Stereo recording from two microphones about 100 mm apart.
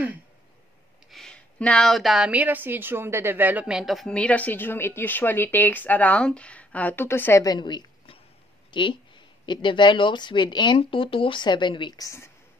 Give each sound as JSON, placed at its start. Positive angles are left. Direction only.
{"t": 1.1, "sound": "a sound", "side_deg": 5}
{"t": 2.3, "sound": "a woman's voice", "side_deg": -15}
{"t": 7.4, "sound": "speech", "side_deg": 45}
{"t": 10.8, "sound": "speech", "side_deg": 65}
{"t": 12.0, "sound": "speech", "side_deg": 30}